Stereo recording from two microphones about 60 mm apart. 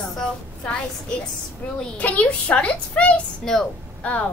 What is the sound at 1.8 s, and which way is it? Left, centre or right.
A woman's voice, left.